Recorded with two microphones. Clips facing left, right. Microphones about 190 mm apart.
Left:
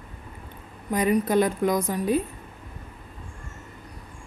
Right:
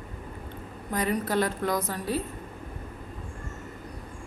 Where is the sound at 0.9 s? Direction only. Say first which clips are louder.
Left 5 dB; 15° left (ahead or behind).